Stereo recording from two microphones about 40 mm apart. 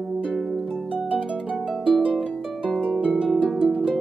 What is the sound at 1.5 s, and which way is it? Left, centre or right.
Harp, centre.